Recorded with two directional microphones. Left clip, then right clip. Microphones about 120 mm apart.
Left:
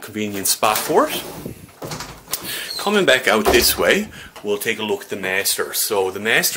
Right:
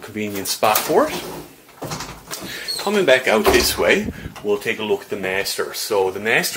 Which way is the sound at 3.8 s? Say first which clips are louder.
Right 1 dB; 45° left (ahead or behind).